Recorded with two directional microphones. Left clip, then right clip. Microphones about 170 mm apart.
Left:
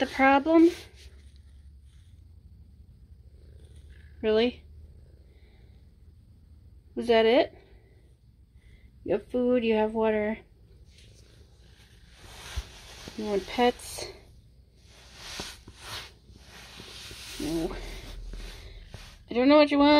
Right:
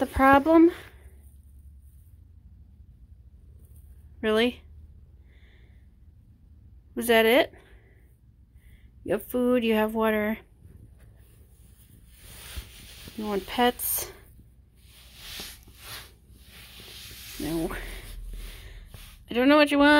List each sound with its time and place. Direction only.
0.0 s speech: 15° right (ahead or behind)
4.2 s speech: 5° right (ahead or behind)
7.1 s speech: 5° right (ahead or behind)
9.0 s speech: centre (ahead or behind)
12.4 s a sound: 40° left (ahead or behind)
13.5 s speech: 5° right (ahead or behind)
15.1 s a sound: 50° left (ahead or behind)
17.5 s speech: 25° right (ahead or behind)
19.2 s speech: 5° right (ahead or behind)